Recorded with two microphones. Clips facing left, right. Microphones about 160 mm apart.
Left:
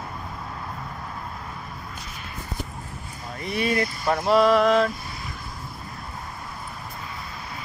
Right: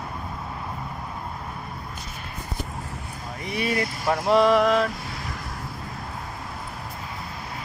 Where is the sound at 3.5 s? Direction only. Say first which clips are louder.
Left 2 dB; 10° right (ahead or behind).